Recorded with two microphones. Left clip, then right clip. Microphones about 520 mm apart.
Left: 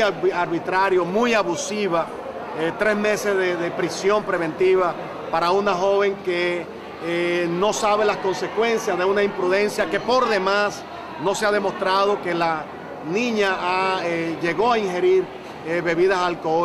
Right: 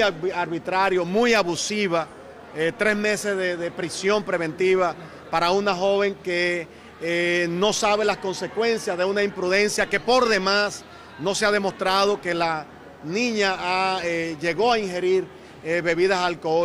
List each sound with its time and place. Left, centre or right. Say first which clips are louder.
0.0 s a man's voice: left 3 dB; right